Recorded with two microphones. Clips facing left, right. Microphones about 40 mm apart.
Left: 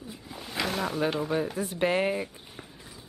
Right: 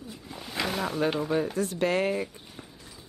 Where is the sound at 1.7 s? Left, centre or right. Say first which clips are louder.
Left 2 dB; centre.